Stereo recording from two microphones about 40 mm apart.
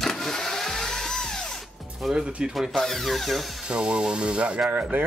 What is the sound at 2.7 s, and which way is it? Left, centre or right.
Speech, centre.